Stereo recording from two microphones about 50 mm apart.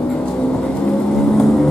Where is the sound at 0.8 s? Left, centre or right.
Centre.